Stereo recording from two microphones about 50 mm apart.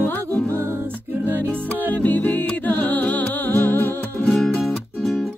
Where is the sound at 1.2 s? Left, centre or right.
Right.